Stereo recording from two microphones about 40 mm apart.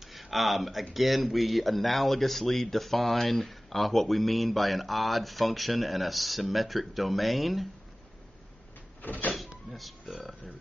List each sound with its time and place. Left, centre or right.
0.0 s speech: centre
9.0 s power windows: left
9.7 s speech: centre